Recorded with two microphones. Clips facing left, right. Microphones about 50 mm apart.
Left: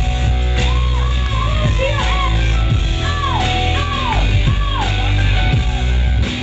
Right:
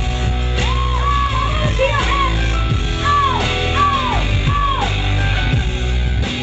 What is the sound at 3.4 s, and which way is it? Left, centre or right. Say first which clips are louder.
Music: right 2 dB; right.